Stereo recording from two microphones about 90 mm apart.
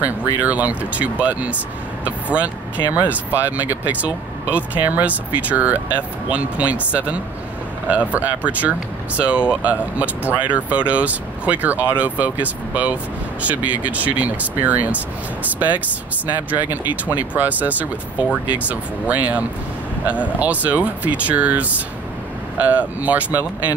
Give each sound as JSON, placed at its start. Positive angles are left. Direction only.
{"t": 0.0, "sound": "speech", "side_deg": -15}
{"t": 16.7, "sound": "speech", "side_deg": -20}